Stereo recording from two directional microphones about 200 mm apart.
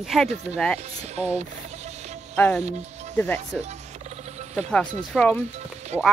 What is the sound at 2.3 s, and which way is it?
Speech, 5° left (ahead or behind).